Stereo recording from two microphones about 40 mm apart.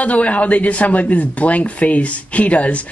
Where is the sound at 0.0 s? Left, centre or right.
Left.